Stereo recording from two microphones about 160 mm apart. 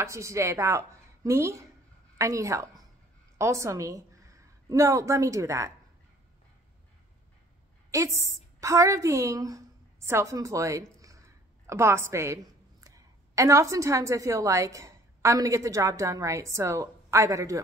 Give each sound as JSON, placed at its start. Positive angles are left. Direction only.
{"t": 0.0, "sound": "a woman's voice", "side_deg": -20}
{"t": 7.9, "sound": "a woman's voice", "side_deg": -20}